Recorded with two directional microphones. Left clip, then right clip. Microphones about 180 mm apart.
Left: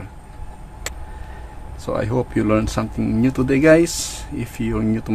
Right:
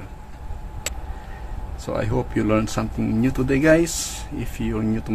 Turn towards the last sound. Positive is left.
turn(degrees=20)  # may be behind; listen again after turning